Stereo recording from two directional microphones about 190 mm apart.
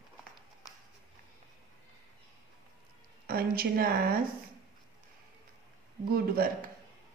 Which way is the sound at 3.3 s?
50° right (ahead or behind).